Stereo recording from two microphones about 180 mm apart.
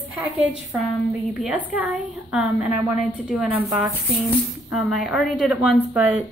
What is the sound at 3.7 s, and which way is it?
Speech, 15° right (ahead or behind).